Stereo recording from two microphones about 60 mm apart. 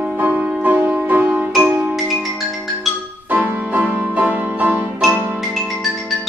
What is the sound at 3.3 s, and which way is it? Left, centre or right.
Music, right.